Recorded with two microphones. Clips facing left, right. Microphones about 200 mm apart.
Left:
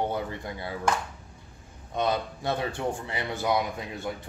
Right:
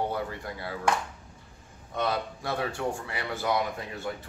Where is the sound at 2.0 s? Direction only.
20° left (ahead or behind).